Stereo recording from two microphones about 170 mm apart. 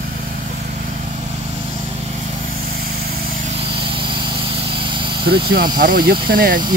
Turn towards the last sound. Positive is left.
turn(degrees=-55)  # may be behind; listen again after turning